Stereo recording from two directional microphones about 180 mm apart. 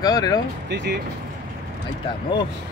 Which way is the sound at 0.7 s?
70° right (ahead or behind).